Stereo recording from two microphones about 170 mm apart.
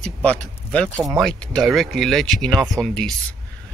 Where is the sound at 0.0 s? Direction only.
5° left (ahead or behind).